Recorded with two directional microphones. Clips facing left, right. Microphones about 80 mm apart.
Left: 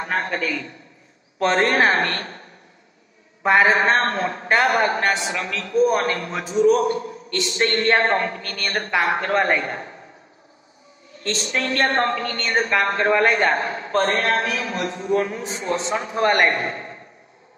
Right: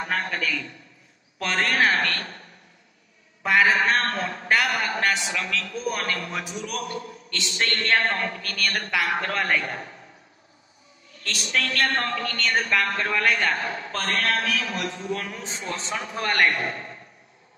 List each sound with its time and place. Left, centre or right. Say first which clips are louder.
0.0 s a man's voice: left 3 dB; left
3.4 s a man's voice: left 4 dB; left
11.1 s a man's voice: left 3 dB; left